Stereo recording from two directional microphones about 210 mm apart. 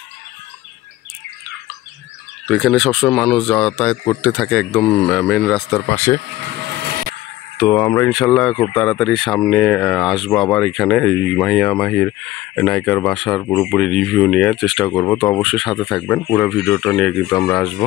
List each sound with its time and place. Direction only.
2.4 s speech: centre (ahead or behind)
5.9 s speech: 15° left (ahead or behind)
6.6 s vehicle: 50° right (ahead or behind)
7.5 s speech: 10° left (ahead or behind)